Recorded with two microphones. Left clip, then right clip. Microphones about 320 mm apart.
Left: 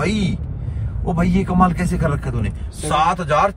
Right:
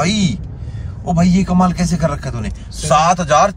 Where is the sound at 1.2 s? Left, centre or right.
Centre.